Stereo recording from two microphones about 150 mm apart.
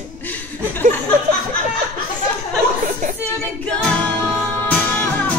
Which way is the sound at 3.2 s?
5° left (ahead or behind).